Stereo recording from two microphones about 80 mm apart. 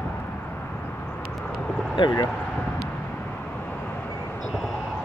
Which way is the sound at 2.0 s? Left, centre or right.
Left.